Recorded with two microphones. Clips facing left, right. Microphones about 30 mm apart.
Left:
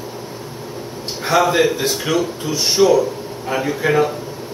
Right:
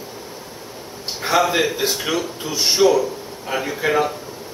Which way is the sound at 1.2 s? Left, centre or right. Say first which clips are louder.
Left 3 dB; centre.